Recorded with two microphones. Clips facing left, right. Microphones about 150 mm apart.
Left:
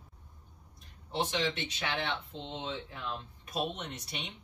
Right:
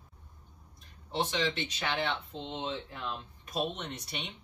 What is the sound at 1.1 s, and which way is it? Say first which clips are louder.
Speech: right 1 dB; centre (ahead or behind).